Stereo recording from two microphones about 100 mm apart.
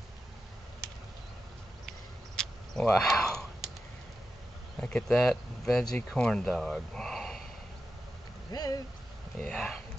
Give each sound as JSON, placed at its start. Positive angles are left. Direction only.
{"t": 2.3, "sound": "a sound", "side_deg": 5}
{"t": 4.7, "sound": "speech", "side_deg": 10}
{"t": 8.5, "sound": "speech", "side_deg": 40}
{"t": 9.5, "sound": "speech", "side_deg": 0}